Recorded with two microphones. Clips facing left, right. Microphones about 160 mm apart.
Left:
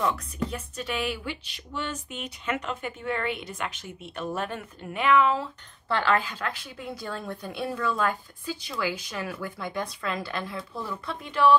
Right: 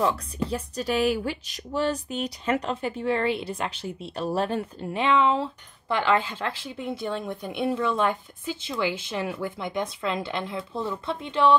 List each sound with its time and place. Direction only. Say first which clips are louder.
0.0 s speech: right 3 dB; 30° right (ahead or behind)
5.9 s speech: right 2 dB; 15° right (ahead or behind)